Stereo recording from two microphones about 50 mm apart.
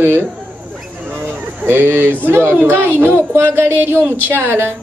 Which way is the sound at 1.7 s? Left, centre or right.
Right.